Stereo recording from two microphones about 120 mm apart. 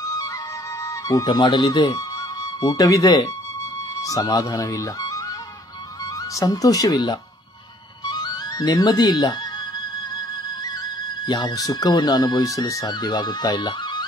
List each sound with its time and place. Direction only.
0.8 s speech: 30° left (ahead or behind)
6.3 s speech: 30° left (ahead or behind)
8.0 s music: 35° left (ahead or behind)
11.2 s speech: 35° left (ahead or behind)